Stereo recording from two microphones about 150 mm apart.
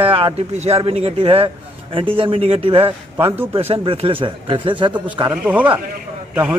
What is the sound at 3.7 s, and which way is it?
Speech, 40° right (ahead or behind).